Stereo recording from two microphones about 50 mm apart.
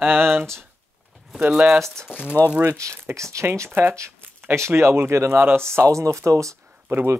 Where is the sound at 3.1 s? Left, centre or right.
Right.